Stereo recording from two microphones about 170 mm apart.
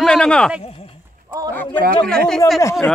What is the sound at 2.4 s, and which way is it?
Speech, 20° left (ahead or behind).